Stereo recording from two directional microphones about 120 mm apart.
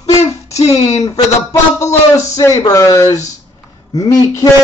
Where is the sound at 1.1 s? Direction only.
25° left (ahead or behind).